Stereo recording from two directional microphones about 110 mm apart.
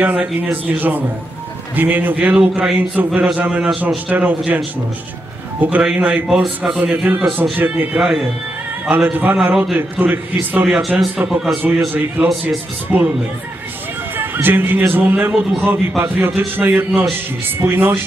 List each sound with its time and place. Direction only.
0.0 s speech: 15° right (ahead or behind)
5.6 s speech: 10° right (ahead or behind)
14.1 s a man's voice: 20° right (ahead or behind)